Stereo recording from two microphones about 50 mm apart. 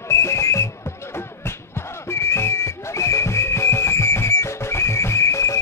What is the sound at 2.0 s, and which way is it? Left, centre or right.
Music, left.